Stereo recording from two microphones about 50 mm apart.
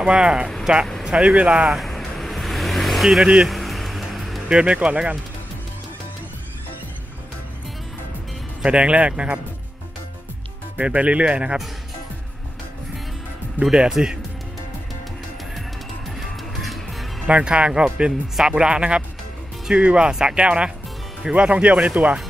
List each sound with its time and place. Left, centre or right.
0.0 s speech: centre
1.0 s a sound: centre
1.3 s speech: right
1.7 s vehicle: centre
3.4 s music: centre
4.5 s speech: right
8.6 s speech: right
10.8 s speech: right
13.6 s speech: centre
16.2 s music: centre
17.3 s speech: right